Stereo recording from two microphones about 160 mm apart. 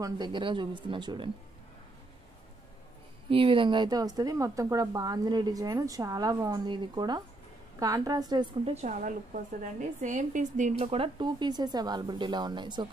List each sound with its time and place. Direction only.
0.0 s speech: 30° right (ahead or behind)
3.3 s a woman's voice: 35° right (ahead or behind)
8.6 s a woman's voice: 45° right (ahead or behind); by 12.8 s 30° right (ahead or behind)